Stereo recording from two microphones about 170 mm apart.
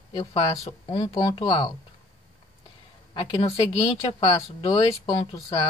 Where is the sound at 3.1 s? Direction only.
30° left (ahead or behind).